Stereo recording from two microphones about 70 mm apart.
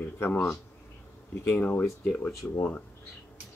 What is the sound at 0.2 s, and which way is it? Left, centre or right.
Speech, left.